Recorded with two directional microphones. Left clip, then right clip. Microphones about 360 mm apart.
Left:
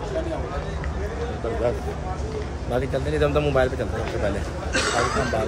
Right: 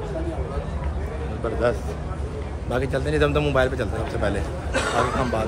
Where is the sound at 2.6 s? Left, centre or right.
Centre.